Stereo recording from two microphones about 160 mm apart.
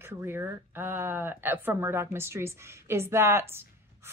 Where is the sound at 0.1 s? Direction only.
15° right (ahead or behind).